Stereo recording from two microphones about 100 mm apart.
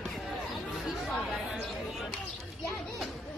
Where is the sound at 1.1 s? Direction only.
5° right (ahead or behind).